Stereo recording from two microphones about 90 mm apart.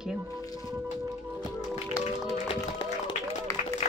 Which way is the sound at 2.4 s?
90° left.